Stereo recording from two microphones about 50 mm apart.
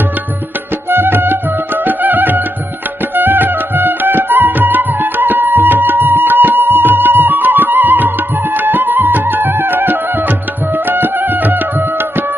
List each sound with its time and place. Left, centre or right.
0.8 s music: right